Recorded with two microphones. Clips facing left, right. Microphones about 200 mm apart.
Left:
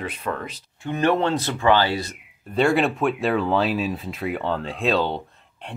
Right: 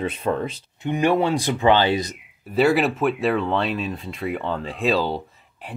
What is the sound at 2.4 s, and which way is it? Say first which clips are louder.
Speech: right 1 dB; 5° right (ahead or behind).